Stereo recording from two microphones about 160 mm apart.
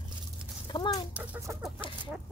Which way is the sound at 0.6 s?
30° left (ahead or behind).